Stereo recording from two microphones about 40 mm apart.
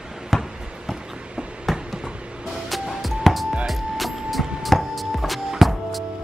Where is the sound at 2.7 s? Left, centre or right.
Centre.